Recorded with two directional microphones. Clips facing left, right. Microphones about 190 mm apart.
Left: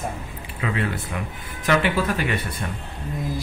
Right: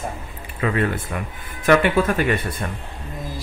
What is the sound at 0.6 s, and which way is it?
A man's voice, 50° right (ahead or behind).